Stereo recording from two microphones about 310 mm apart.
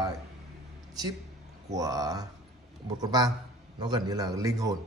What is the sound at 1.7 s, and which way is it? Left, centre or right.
A man's voice, centre.